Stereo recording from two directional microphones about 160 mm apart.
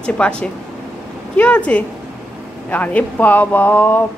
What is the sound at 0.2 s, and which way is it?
A child's voice, 10° left (ahead or behind).